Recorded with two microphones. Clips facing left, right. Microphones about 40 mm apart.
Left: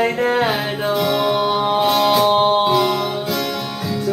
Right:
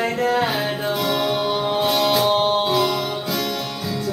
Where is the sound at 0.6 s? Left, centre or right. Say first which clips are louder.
Left 3 dB; centre.